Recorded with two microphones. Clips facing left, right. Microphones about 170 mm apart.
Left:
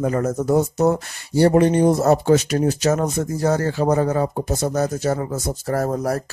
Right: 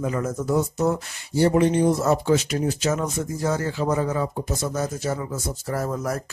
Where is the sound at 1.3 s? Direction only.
60° left (ahead or behind).